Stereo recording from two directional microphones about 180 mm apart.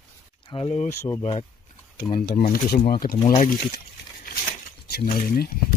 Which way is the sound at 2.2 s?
55° left (ahead or behind).